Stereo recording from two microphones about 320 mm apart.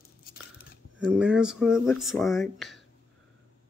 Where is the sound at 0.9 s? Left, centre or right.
Centre.